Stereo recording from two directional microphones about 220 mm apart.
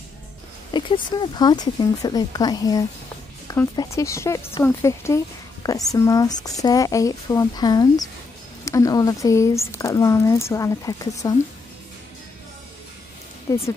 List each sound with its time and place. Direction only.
0.7 s speech: 20° left (ahead or behind)
13.5 s speech: 15° left (ahead or behind)